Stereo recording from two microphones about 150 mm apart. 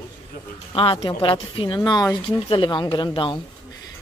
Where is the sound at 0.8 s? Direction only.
35° left (ahead or behind).